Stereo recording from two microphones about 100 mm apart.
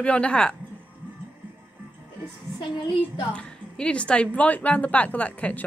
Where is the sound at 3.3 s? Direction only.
10° left (ahead or behind).